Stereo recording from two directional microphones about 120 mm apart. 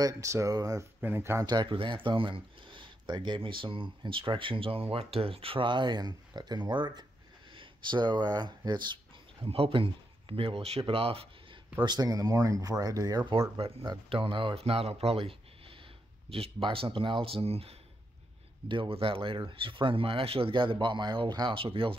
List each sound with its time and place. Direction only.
0.0 s speech: 25° right (ahead or behind)
1.0 s speech: 20° right (ahead or behind)
1.4 s speech: 35° right (ahead or behind)
11.8 s speech: 35° right (ahead or behind)
13.6 s speech: 55° right (ahead or behind)